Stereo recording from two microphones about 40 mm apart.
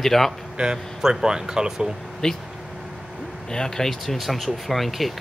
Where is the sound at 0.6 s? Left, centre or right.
Right.